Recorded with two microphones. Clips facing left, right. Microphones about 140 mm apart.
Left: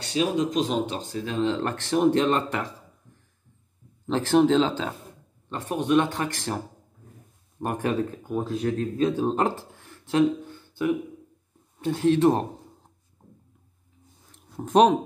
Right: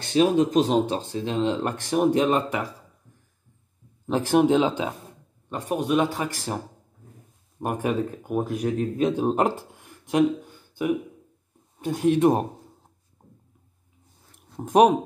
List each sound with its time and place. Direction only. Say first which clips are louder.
0.1 s speech: right 5 dB; 45° right (ahead or behind); by 2.7 s 10° right (ahead or behind)
4.1 s speech: even; 10° right (ahead or behind)
7.6 s speech: right 1 dB; 10° right (ahead or behind)
14.6 s speech: right 1 dB; 10° right (ahead or behind)